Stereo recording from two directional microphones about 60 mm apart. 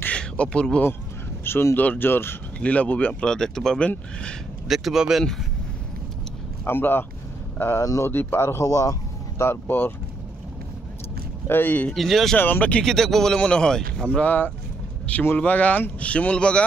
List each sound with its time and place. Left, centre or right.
0.1 s a sound: centre
0.5 s speech: centre
1.4 s speech: left
1.8 s speech: left
2.6 s speech: left
3.3 s speech: centre
4.6 s speech: centre
6.6 s speech: left
9.4 s speech: left
11.4 s speech: left
11.9 s speech: centre
12.4 s speech: left
12.8 s speech: centre